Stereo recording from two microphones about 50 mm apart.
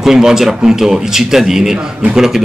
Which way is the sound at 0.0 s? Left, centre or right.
Centre.